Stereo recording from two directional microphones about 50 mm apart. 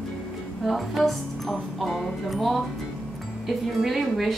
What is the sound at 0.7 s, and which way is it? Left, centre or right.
A woman's voice, centre.